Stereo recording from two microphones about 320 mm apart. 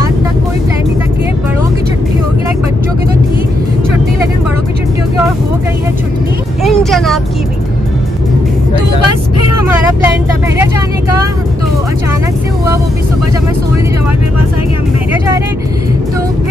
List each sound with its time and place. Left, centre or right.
6.6 s vehicle: centre
9.0 s vehicle: left